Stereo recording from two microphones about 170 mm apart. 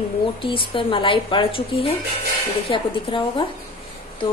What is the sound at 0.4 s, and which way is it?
A woman's voice, 30° left (ahead or behind).